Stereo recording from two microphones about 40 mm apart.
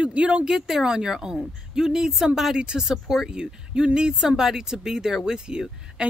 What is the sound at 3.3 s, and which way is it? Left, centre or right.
Speech, right.